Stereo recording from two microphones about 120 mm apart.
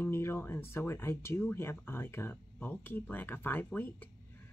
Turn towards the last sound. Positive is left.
turn(degrees=15)  # may be behind; listen again after turning